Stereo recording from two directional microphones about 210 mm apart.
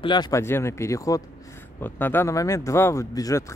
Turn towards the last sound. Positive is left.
turn(degrees=15)  # may be behind; listen again after turning